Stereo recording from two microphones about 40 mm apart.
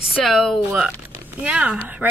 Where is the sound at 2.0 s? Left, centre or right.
Right.